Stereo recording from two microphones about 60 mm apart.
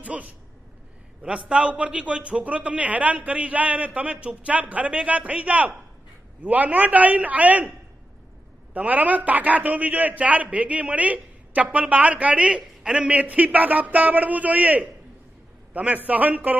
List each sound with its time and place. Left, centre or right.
0.0 s a sound: right
1.2 s a man's voice: centre
8.7 s a man's voice: right